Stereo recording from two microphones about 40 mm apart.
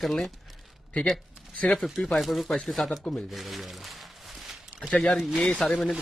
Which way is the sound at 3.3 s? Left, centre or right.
Centre.